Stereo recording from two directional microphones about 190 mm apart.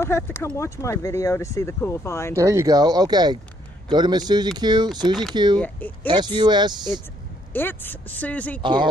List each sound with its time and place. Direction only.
0.0 s speech: 15° left (ahead or behind)
2.3 s speech: 15° right (ahead or behind)
5.6 s speech: 10° left (ahead or behind)
6.0 s speech: 25° right (ahead or behind)
7.5 s speech: 10° left (ahead or behind)